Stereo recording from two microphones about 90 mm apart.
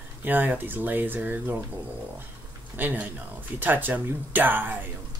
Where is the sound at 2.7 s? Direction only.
20° right (ahead or behind).